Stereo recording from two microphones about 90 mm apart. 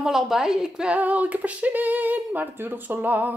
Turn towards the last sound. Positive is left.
turn(degrees=-20)  # may be behind; listen again after turning